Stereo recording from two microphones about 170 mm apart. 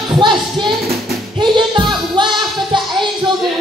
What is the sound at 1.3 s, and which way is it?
Music, 30° right (ahead or behind).